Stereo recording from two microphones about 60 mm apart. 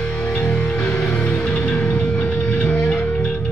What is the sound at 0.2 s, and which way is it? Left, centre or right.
Music, left.